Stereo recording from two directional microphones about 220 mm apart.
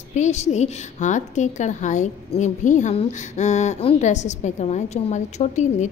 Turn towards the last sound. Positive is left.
turn(degrees=30)  # may be behind; listen again after turning